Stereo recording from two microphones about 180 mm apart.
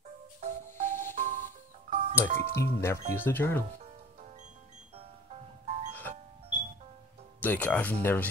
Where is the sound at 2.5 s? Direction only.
15° left (ahead or behind).